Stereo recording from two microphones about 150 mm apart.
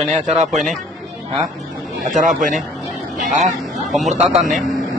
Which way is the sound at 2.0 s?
60° right (ahead or behind).